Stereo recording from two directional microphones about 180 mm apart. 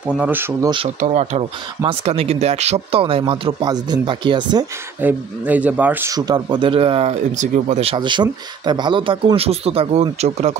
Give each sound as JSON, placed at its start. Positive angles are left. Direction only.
{"t": 0.0, "sound": "speech", "side_deg": -5}
{"t": 1.0, "sound": "speech", "side_deg": -40}
{"t": 5.0, "sound": "speech", "side_deg": -10}